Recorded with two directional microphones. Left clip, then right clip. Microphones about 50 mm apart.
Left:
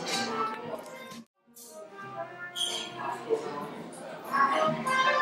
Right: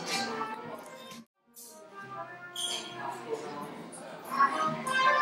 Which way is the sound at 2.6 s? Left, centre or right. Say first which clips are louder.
Left 3 dB; right.